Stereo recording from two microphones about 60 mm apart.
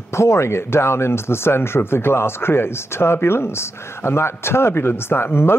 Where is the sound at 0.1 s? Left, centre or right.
Left.